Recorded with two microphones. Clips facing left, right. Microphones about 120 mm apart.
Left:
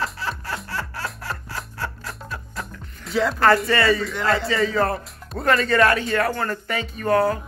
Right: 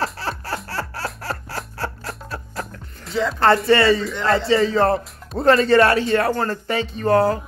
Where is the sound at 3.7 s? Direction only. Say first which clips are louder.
Right 4 dB; 30° right (ahead or behind).